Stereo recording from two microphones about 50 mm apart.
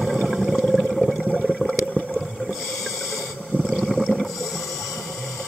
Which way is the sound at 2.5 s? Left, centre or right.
Centre.